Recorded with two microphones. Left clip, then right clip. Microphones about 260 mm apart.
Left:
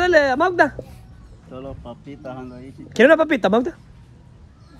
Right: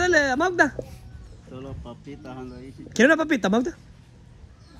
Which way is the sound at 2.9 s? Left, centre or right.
Right.